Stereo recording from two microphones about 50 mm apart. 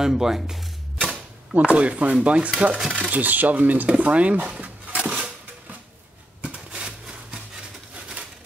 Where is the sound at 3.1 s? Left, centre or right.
Right.